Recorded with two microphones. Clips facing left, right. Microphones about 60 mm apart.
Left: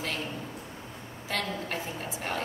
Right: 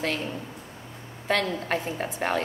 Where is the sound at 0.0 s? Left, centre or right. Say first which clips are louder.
Right 5 dB; right.